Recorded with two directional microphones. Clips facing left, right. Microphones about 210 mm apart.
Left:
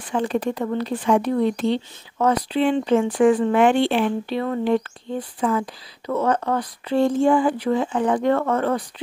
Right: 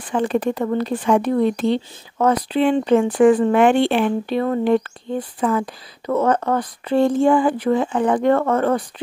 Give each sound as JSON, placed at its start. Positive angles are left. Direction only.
{"t": 0.1, "sound": "speech", "side_deg": -55}